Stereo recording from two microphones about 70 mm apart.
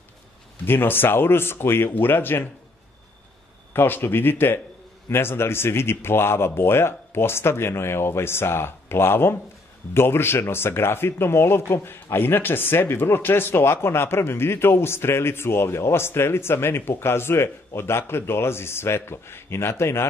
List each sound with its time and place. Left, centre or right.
0.7 s speech: left
3.7 s speech: left